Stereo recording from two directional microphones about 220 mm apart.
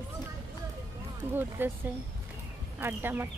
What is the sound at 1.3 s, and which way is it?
Speech, 10° right (ahead or behind).